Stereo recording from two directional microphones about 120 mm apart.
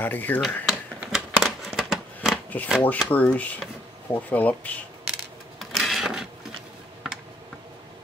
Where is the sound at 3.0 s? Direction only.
10° left (ahead or behind).